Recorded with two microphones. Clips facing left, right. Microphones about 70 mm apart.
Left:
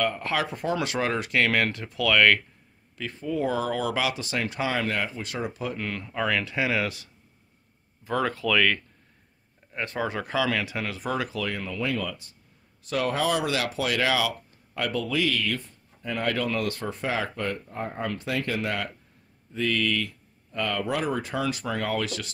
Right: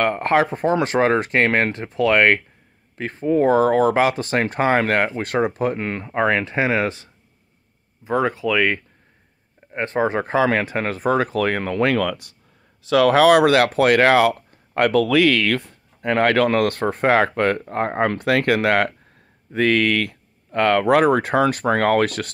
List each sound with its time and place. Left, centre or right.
0.0 s speech: right
9.7 s speech: right
12.8 s speech: right